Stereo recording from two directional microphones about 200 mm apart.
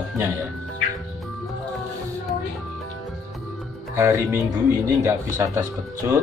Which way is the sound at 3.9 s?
15° right (ahead or behind).